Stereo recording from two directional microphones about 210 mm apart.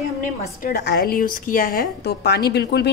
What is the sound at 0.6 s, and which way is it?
Speech, 50° left (ahead or behind).